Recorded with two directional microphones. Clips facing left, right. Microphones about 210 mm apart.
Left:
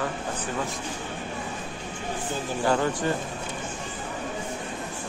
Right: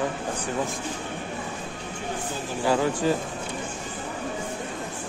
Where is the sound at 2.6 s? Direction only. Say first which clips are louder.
Right 2 dB; 5° right (ahead or behind).